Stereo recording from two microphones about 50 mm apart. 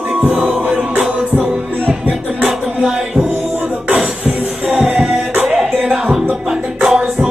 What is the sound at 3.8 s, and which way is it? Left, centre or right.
Music, right.